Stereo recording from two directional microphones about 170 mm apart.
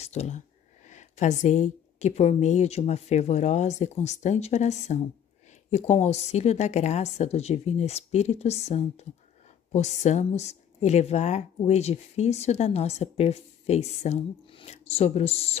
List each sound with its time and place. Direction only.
0.0 s speech: 40° left (ahead or behind)